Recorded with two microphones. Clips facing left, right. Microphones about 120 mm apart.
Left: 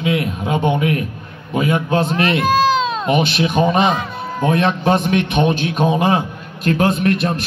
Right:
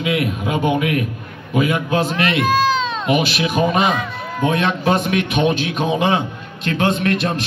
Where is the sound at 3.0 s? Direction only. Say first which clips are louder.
Left 1 dB; 35° left (ahead or behind).